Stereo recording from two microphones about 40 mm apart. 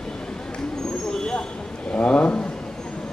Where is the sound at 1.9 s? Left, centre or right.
Left.